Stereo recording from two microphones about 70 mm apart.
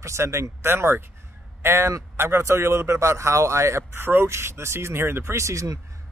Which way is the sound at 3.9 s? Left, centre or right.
Right.